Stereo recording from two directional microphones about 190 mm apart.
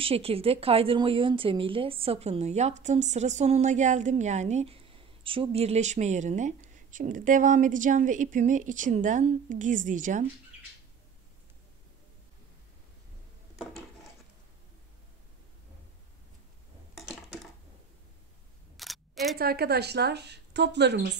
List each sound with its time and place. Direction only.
0.0 s a woman's voice: 30° right (ahead or behind)
16.9 s a sound: centre (ahead or behind)
18.8 s camera: centre (ahead or behind)
19.3 s speech: 55° right (ahead or behind)